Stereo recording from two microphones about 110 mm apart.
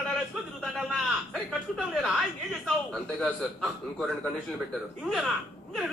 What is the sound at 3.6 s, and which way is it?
Speech, centre (ahead or behind).